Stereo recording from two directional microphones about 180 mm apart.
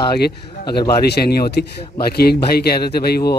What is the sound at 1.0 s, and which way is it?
Speech, 65° left (ahead or behind).